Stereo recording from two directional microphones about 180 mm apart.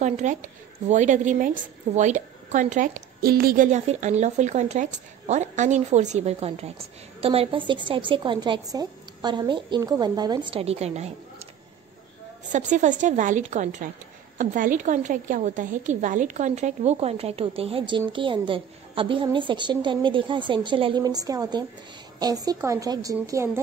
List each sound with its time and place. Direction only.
0.0 s a woman's voice: 40° right (ahead or behind)
3.7 s a woman's voice: 40° right (ahead or behind)
12.5 s a woman's voice: 40° right (ahead or behind); by 23.6 s 15° right (ahead or behind)